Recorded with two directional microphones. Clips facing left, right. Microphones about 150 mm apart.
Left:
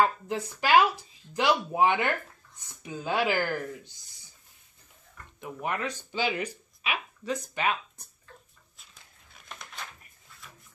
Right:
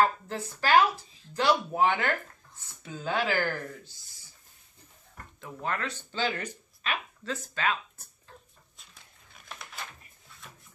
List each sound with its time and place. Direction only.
0.0 s speech: 15° left (ahead or behind)
5.4 s speech: 15° left (ahead or behind)
9.3 s a sound: centre (ahead or behind)